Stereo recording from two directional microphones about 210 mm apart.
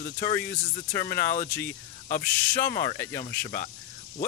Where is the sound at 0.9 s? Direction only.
45° left (ahead or behind).